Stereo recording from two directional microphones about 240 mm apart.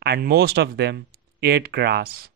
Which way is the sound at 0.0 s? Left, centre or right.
Right.